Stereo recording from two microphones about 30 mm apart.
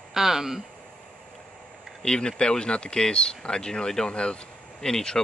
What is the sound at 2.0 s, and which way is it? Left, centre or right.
Speech, left.